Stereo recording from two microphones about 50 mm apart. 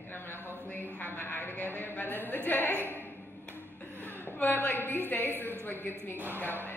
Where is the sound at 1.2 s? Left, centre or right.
Left.